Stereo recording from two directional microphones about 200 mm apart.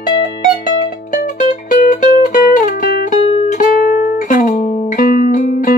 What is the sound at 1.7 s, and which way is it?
Music, 40° left (ahead or behind).